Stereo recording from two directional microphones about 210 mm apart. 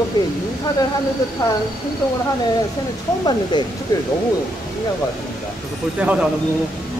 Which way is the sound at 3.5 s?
20° left (ahead or behind).